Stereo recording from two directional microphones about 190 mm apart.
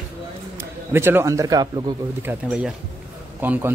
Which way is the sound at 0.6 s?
10° right (ahead or behind).